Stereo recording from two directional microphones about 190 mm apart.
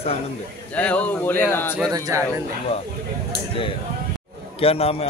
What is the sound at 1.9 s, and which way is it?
Speech, 20° right (ahead or behind).